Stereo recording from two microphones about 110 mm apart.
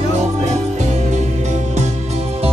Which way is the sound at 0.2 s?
90° right.